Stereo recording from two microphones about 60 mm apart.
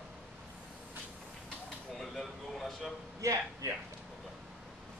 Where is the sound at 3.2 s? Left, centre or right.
Right.